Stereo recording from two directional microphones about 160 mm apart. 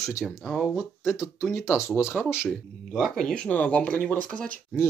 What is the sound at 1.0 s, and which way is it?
Speech, 15° left (ahead or behind).